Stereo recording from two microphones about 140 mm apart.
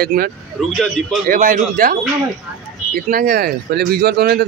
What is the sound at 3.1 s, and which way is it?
Speech, 90° right.